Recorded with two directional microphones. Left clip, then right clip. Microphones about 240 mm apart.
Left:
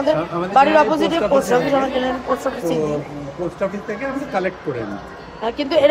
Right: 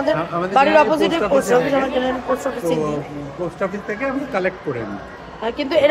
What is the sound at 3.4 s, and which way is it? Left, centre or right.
A man's voice, centre.